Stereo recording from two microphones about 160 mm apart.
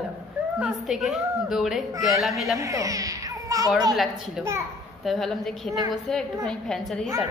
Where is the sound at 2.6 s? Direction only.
20° right (ahead or behind).